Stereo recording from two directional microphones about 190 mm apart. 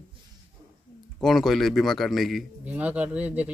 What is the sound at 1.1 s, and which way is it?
A man's voice, centre (ahead or behind).